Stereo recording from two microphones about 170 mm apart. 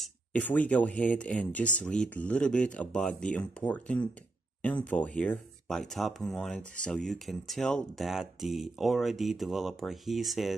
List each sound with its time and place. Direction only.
0.0 s speech: 10° left (ahead or behind)